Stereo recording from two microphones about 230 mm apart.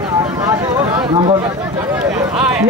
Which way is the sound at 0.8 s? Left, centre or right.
Centre.